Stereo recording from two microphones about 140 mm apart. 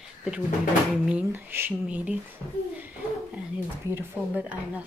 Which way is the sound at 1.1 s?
10° right (ahead or behind).